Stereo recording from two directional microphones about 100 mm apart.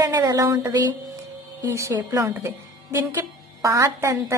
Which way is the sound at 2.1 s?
35° right (ahead or behind).